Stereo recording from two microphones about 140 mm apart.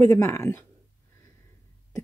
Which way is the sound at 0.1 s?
20° left (ahead or behind).